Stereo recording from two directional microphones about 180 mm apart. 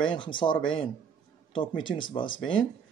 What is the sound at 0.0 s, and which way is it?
Speech, 25° left (ahead or behind).